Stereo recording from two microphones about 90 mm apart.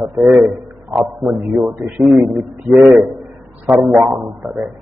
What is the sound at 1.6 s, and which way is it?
Speech, 15° right (ahead or behind).